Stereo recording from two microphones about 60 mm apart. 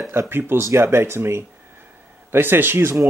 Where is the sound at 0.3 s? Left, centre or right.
Right.